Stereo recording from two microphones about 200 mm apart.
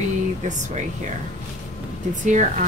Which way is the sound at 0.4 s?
40° right (ahead or behind).